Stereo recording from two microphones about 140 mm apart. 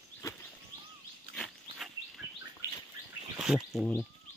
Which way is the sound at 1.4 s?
Centre (ahead or behind).